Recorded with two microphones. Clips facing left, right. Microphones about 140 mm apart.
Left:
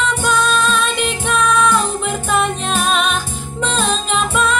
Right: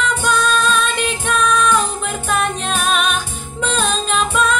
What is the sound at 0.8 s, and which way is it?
Music, 5° left (ahead or behind).